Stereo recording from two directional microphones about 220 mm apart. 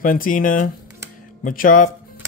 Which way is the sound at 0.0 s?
40° left (ahead or behind).